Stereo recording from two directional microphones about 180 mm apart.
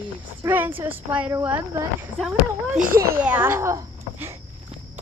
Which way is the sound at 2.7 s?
50° right (ahead or behind).